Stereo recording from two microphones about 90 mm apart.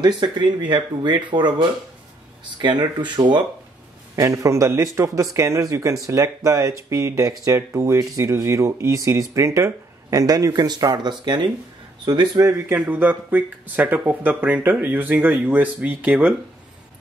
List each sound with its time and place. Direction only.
0.0 s speech: 55° right (ahead or behind)
4.1 s speech: 35° right (ahead or behind); by 12.3 s 55° right (ahead or behind)
12.4 s speech: 35° right (ahead or behind)
12.7 s speech: 15° right (ahead or behind)